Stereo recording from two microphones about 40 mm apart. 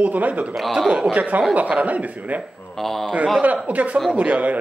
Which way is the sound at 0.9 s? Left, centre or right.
Centre.